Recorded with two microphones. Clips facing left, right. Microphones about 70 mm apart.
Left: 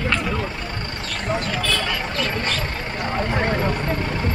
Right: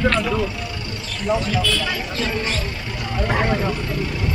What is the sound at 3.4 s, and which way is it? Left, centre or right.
Speech, left.